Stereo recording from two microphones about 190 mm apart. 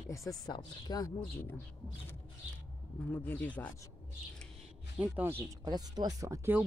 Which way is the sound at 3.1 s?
10° left (ahead or behind).